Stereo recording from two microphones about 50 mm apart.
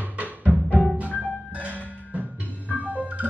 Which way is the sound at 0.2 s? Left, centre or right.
Right.